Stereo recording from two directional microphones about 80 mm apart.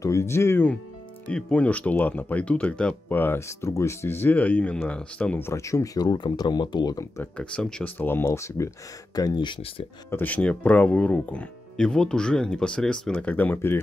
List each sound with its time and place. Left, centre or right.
0.0 s speech: left
1.2 s speech: centre
3.1 s speech: left
5.4 s speech: left
6.0 s speech: left
7.3 s speech: centre
8.2 s speech: left
9.1 s speech: left
10.1 s speech: centre
11.7 s speech: centre; by 13.7 s left